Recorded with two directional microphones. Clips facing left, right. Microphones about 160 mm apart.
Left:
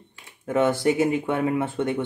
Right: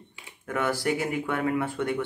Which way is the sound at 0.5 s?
20° left (ahead or behind).